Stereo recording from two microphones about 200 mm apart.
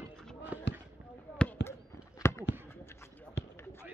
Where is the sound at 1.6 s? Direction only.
55° left (ahead or behind).